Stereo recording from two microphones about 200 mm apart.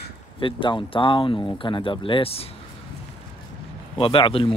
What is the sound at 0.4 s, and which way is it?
Speech, 25° left (ahead or behind).